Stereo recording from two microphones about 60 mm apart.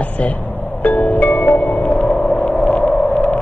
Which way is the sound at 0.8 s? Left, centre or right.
Left.